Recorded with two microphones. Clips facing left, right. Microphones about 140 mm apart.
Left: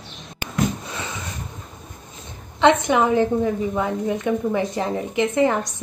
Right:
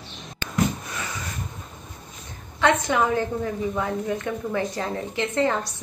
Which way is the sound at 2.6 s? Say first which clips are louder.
Left 4 dB; 20° left (ahead or behind).